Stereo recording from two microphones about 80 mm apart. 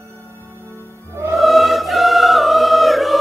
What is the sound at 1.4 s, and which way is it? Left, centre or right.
Choir, centre.